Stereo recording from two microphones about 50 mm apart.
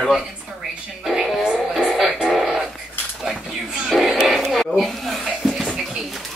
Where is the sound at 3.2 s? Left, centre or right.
Centre.